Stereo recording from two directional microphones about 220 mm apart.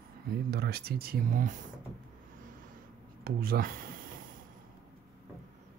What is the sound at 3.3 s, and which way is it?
Speech, 45° right (ahead or behind).